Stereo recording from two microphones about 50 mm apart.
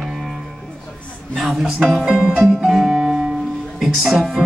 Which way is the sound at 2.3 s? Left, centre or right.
Centre.